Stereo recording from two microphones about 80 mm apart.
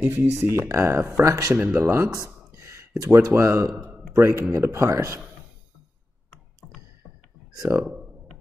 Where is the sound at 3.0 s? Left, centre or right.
Right.